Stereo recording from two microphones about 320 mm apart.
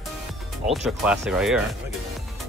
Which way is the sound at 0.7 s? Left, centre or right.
Centre.